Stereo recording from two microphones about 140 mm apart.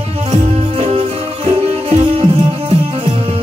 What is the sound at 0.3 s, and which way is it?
Music, 45° right (ahead or behind).